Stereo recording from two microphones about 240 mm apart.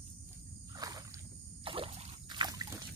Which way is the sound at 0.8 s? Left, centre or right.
Centre.